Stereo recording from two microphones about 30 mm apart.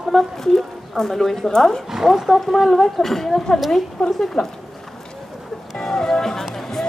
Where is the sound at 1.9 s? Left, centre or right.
Centre.